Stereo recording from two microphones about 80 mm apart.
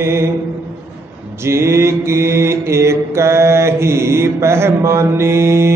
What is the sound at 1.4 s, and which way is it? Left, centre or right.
Mantra, right.